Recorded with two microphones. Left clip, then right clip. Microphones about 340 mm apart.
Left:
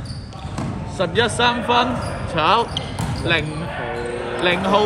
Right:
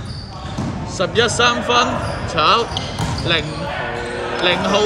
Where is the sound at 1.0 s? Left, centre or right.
Left.